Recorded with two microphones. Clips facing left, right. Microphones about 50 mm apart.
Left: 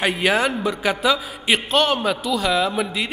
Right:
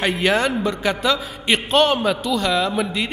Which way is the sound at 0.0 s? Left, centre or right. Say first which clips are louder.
Even; centre.